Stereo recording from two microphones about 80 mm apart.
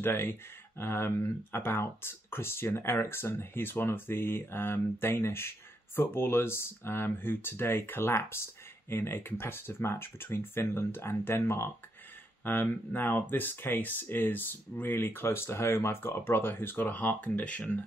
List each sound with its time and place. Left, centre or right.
0.0 s speech: left